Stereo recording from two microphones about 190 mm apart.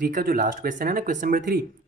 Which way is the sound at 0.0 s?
50° right (ahead or behind).